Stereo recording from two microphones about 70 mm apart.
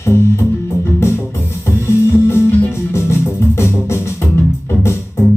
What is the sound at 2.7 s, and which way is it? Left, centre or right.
Music, left.